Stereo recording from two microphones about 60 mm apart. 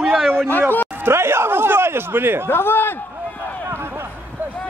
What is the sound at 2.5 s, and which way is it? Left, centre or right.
Speech, left.